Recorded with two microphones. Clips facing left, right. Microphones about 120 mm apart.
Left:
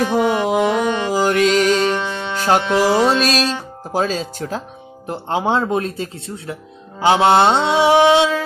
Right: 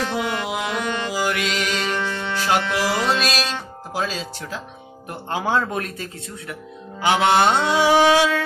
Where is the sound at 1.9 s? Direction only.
20° left (ahead or behind).